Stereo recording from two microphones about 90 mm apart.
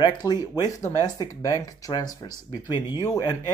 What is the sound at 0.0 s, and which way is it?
Speech, 50° left (ahead or behind).